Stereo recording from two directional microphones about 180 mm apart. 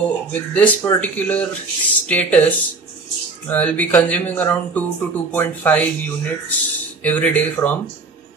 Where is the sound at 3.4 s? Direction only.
10° left (ahead or behind).